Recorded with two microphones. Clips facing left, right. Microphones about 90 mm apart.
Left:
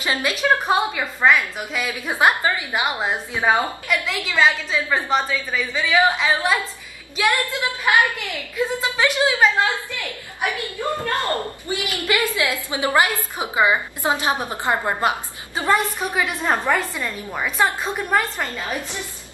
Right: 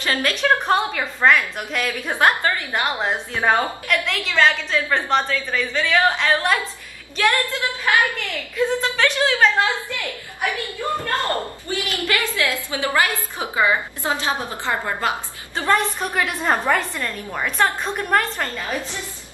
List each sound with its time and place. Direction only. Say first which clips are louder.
0.0 s a woman's voice: right 1 dB; 10° left (ahead or behind)
7.2 s a woman's voice: right 1 dB; 15° left (ahead or behind)
10.8 s a woman's voice: even; 20° left (ahead or behind); by 18.5 s 5° left (ahead or behind)